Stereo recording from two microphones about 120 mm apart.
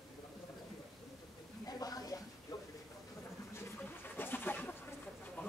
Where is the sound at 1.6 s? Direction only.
30° left (ahead or behind).